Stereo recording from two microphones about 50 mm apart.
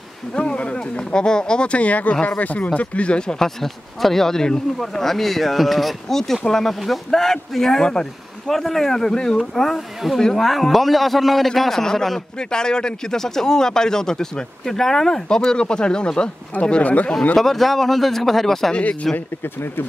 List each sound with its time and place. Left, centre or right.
0.4 s speech: left
16.8 s speech: left
17.4 s speech: centre
18.7 s speech: left